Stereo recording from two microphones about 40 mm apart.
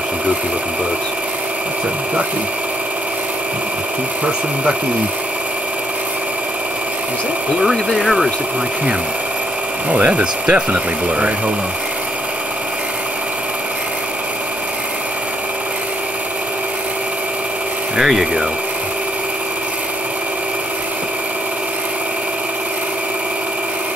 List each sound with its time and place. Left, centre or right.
9.8 s speech: right
17.9 s speech: centre